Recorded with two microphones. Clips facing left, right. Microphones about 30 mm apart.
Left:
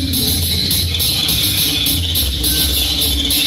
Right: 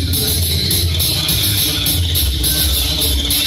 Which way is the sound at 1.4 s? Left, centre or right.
Left.